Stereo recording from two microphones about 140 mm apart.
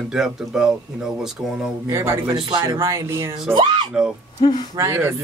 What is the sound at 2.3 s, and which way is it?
Speech, 30° right (ahead or behind).